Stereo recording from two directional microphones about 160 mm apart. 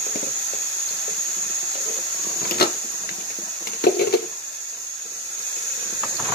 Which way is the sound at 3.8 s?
80° left.